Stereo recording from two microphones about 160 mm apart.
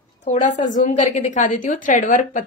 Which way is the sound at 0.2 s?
50° left (ahead or behind).